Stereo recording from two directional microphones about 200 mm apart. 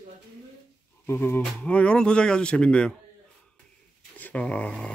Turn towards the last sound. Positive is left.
turn(degrees=5)  # may be behind; listen again after turning